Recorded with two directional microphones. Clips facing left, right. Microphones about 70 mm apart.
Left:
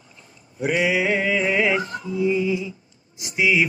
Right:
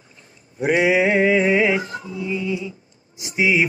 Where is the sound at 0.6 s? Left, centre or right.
Right.